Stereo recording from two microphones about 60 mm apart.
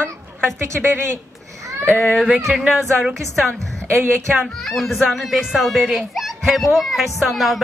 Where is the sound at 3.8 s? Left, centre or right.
Right.